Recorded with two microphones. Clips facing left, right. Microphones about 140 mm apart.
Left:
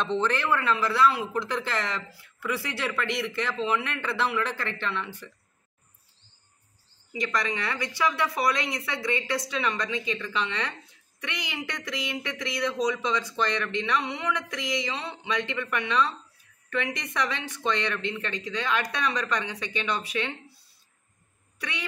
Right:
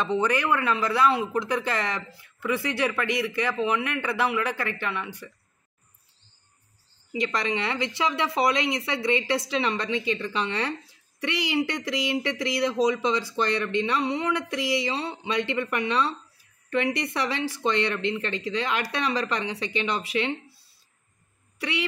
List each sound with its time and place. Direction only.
0.0 s speech: 10° right (ahead or behind)
7.1 s speech: 25° right (ahead or behind)